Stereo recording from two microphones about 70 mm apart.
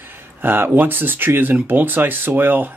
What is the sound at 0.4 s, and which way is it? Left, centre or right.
Speech, right.